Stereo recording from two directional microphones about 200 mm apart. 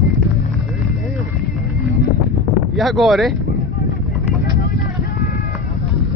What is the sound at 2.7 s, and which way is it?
Speech, centre (ahead or behind).